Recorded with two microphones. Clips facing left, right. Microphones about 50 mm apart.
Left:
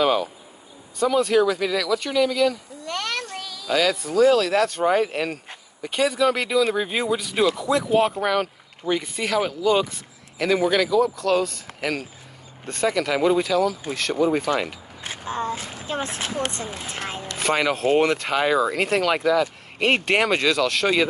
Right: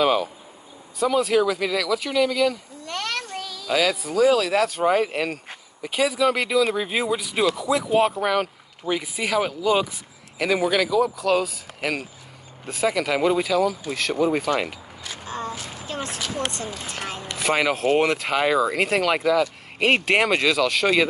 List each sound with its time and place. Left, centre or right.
0.0 s a sound: centre
0.9 s speech: centre
15.0 s speech: left
17.4 s speech: centre